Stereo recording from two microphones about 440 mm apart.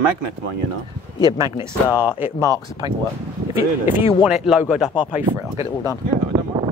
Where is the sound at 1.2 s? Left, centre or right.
Centre.